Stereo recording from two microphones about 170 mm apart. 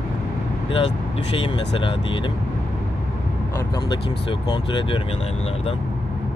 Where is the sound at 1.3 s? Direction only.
30° left (ahead or behind).